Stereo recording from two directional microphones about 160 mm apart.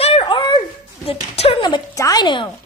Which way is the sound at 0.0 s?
35° left (ahead or behind).